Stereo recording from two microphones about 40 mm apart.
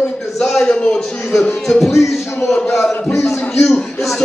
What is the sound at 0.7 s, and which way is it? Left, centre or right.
Speech, left.